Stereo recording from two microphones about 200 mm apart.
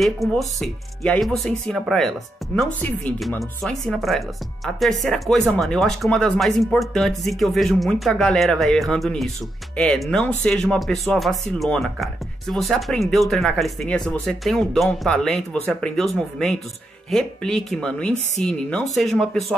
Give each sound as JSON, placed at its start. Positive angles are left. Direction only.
{"t": 0.0, "sound": "speech", "side_deg": 0}